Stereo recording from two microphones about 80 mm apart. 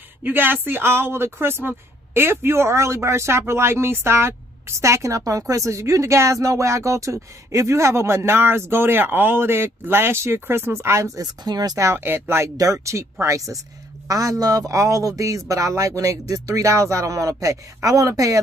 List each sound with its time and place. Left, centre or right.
0.2 s a man's voice: right
11.4 s speech: right
11.8 s speech: right
12.5 s a man's voice: right